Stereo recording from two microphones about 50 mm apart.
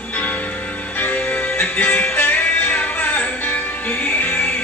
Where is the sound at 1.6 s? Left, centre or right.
Left.